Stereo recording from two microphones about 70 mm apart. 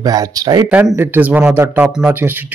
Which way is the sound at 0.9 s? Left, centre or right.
Right.